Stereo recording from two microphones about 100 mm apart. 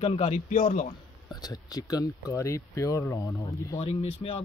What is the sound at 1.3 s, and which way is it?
Speech, 40° left (ahead or behind).